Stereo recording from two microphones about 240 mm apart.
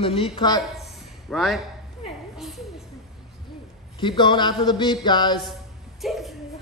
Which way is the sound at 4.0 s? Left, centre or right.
Centre.